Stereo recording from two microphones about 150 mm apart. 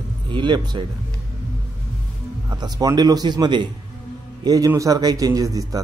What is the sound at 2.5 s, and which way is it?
A man's voice, 25° right (ahead or behind).